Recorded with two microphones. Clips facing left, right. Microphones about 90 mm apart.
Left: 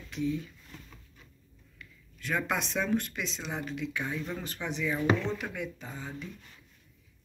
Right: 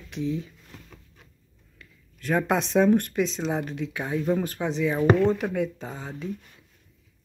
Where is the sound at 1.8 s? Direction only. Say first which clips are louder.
Right 1 dB; 40° right (ahead or behind).